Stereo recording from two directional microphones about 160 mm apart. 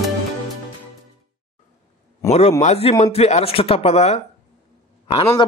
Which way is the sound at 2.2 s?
20° left (ahead or behind).